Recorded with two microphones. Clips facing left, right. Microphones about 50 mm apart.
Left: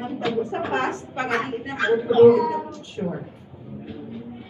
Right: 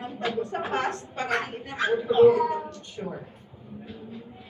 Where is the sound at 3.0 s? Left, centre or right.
Centre.